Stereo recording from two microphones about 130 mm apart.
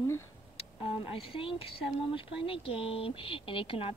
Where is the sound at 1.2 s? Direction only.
45° left (ahead or behind).